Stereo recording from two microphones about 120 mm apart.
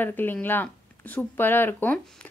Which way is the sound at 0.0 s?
15° left (ahead or behind).